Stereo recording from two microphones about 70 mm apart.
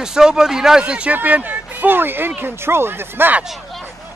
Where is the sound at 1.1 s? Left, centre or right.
Right.